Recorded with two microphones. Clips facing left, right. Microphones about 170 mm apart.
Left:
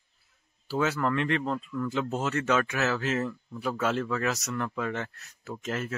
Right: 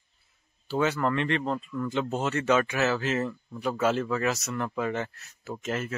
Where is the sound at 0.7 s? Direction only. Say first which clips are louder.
Right 1 dB; centre (ahead or behind).